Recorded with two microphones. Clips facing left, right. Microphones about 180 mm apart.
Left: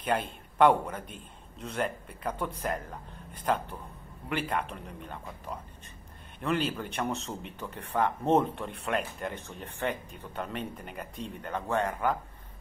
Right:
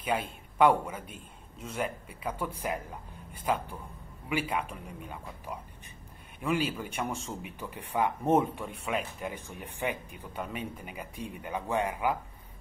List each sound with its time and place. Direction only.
0.0 s a man's voice: 5° right (ahead or behind)